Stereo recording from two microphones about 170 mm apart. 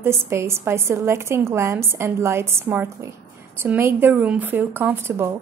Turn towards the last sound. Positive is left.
turn(degrees=-15)  # may be behind; listen again after turning